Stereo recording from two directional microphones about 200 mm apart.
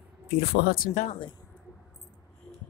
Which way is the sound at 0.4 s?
55° left (ahead or behind).